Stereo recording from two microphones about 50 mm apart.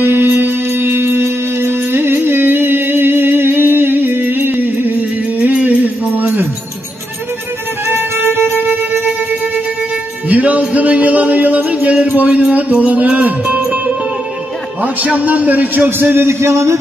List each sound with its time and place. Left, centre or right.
0.0 s music: right
5.4 s music: right
7.8 s music: right
10.2 s music: right
10.7 s a sound: right
12.5 s music: right
15.1 s a man's voice: right
16.2 s a sound: right